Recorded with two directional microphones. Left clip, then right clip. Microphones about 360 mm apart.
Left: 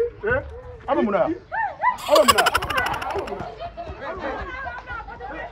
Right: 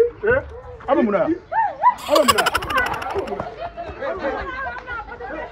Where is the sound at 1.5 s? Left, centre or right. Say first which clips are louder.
Right 5 dB; centre.